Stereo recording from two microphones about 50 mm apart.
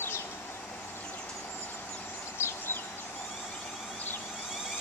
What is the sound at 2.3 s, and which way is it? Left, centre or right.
Bird, left.